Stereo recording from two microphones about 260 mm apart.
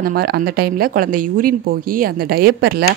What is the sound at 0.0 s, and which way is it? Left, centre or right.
Speech, right.